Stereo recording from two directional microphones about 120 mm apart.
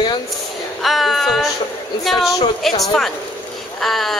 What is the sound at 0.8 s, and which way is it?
Speech, centre (ahead or behind).